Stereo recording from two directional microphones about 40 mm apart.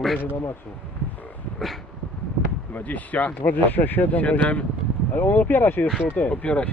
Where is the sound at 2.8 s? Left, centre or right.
Left.